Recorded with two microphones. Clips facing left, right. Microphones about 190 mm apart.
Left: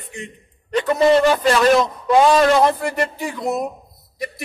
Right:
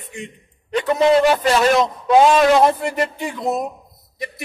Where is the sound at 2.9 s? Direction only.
Centre (ahead or behind).